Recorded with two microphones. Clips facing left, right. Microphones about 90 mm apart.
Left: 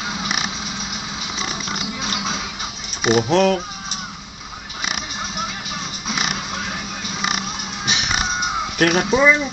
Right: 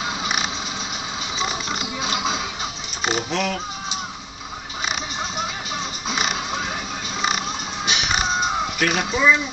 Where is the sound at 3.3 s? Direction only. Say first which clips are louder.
Left 9 dB; 40° left (ahead or behind).